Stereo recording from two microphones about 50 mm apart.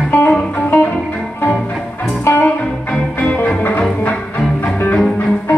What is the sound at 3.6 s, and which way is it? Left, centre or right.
Music, left.